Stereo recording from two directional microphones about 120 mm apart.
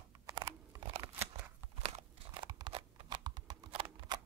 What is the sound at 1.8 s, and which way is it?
Crunch, 60° right (ahead or behind).